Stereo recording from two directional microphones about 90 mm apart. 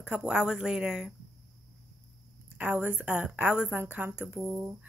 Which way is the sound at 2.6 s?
20° right (ahead or behind).